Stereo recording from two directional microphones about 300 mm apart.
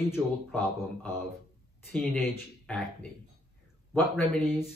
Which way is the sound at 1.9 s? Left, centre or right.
Centre.